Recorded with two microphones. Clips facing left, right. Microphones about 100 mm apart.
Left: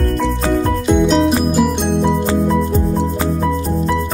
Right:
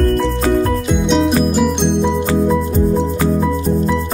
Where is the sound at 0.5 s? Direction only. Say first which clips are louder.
Left 1 dB; centre (ahead or behind).